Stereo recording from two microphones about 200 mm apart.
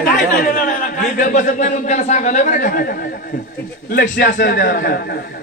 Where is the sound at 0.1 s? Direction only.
45° left (ahead or behind).